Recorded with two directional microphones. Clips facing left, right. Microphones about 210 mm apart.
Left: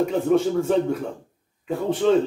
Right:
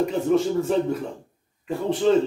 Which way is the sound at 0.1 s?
Centre (ahead or behind).